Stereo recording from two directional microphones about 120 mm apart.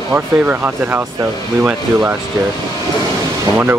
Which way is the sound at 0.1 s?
15° right (ahead or behind).